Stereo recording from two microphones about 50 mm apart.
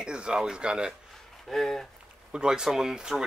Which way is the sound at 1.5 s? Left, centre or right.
Centre.